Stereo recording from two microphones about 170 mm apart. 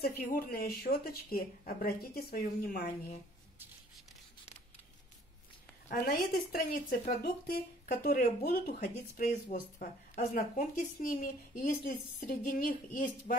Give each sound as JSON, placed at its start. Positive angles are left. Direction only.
{"t": 0.0, "sound": "speech", "side_deg": 60}
{"t": 5.9, "sound": "speech", "side_deg": 55}